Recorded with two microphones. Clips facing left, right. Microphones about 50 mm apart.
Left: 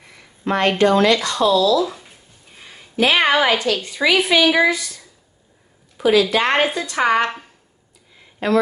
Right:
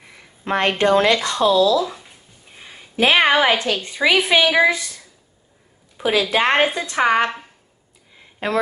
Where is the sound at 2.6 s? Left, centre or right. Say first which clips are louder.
Even; centre.